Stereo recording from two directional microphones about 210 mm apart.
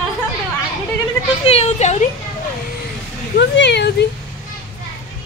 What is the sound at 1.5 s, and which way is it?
Speech, 30° left (ahead or behind).